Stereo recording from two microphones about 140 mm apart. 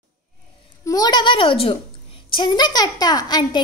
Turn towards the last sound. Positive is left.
turn(degrees=30)  # may be behind; listen again after turning